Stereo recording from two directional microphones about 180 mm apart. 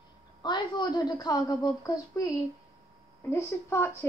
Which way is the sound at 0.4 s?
25° left (ahead or behind).